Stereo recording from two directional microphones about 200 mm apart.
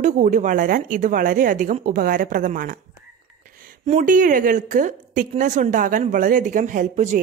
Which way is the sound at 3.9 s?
40° right (ahead or behind).